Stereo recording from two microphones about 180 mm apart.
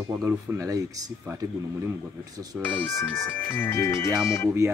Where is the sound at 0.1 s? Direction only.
15° right (ahead or behind).